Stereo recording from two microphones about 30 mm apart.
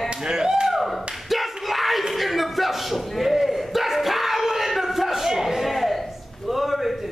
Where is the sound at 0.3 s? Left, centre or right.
Right.